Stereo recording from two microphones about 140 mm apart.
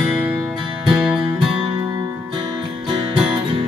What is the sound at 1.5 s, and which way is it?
Music, 35° right (ahead or behind).